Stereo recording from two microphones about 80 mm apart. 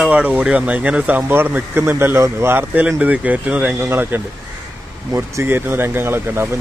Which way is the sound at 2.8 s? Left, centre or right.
Centre.